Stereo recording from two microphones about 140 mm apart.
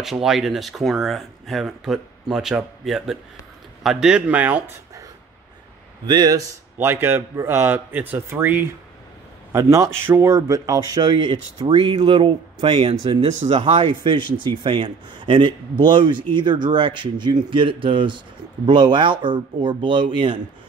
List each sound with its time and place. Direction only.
0.0 s speech: centre (ahead or behind)
6.0 s speech: 30° right (ahead or behind)
13.2 s speech: 55° right (ahead or behind)
13.6 s speech: 40° right (ahead or behind)